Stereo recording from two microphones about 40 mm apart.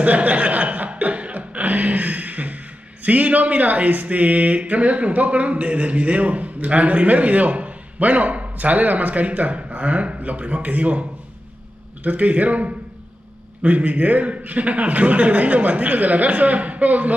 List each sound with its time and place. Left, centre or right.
0.0 s speech: right